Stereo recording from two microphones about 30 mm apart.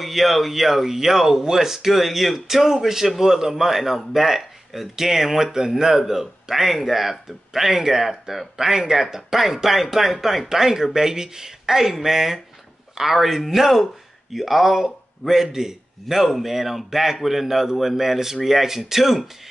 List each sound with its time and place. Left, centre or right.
0.0 s speech: centre
10.5 s speech: centre